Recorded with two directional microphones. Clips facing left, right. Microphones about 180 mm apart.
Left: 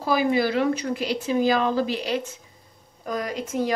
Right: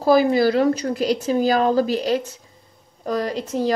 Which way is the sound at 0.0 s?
40° right (ahead or behind).